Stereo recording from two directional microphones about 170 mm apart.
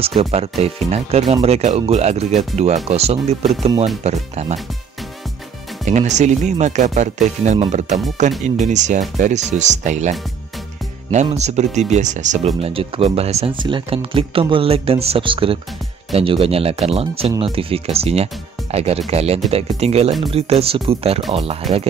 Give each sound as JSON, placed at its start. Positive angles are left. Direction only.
{"t": 0.0, "sound": "speech", "side_deg": -35}
{"t": 5.9, "sound": "speech", "side_deg": -45}